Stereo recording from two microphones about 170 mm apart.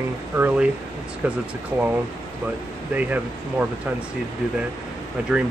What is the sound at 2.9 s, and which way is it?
Speech, 10° right (ahead or behind).